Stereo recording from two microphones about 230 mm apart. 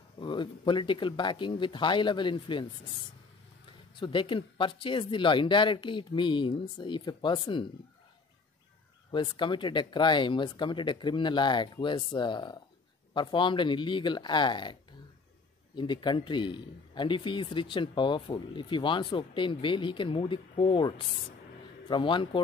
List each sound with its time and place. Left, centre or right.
0.2 s a man's voice: left
3.9 s a man's voice: left
9.1 s a man's voice: centre